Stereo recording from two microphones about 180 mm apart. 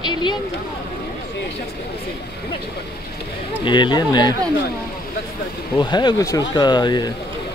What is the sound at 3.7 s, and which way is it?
Speech, 25° left (ahead or behind).